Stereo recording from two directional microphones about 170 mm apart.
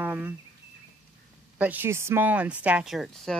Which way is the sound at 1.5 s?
10° right (ahead or behind).